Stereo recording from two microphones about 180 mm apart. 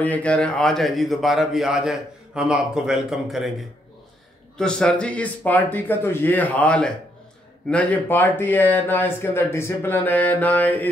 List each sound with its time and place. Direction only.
0.0 s a man's voice: 10° left (ahead or behind)
4.6 s speech: 5° left (ahead or behind)